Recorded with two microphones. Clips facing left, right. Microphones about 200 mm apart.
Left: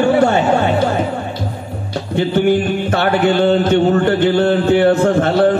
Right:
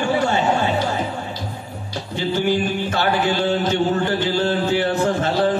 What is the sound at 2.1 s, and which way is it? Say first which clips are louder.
Mantra: left 6 dB; 60° left (ahead or behind).